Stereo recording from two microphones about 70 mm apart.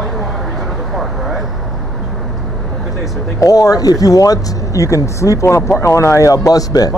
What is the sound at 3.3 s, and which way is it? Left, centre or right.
Speech, left.